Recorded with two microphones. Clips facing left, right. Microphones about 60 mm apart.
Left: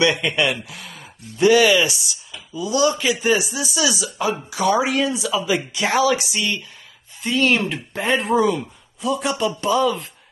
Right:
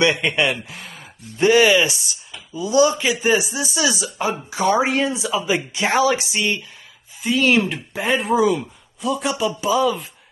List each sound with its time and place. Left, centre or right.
0.0 s speech: right
7.2 s speech: centre